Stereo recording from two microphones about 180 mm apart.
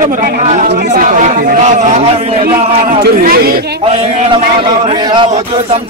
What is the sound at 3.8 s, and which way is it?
A man's voice, 35° right (ahead or behind).